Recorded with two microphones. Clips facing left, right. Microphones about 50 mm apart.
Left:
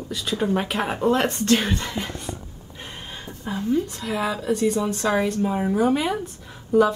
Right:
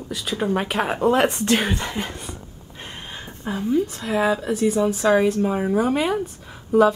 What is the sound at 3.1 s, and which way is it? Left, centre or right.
Speech, centre.